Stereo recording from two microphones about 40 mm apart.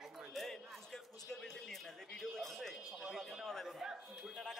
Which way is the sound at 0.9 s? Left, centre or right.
Centre.